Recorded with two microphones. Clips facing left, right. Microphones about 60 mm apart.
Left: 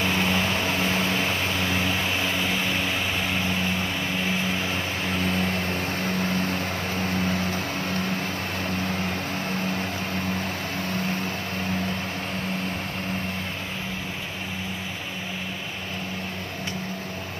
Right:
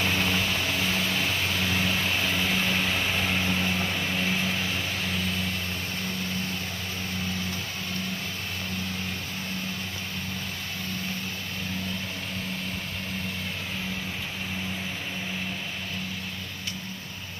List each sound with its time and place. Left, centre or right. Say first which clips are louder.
0.0 s vehicle: left 3 dB; centre; by 5.3 s left
5.3 s vehicle: left 5 dB; left
6.0 s vehicle: left 7 dB; left